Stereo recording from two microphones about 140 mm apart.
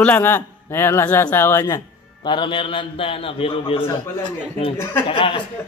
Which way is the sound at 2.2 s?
35° left (ahead or behind).